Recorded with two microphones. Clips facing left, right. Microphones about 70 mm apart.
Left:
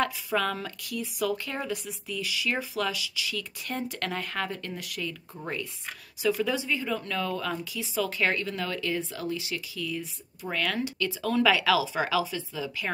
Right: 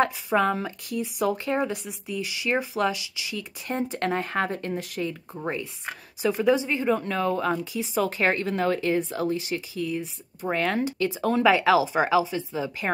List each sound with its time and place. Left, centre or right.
0.0 s speech: right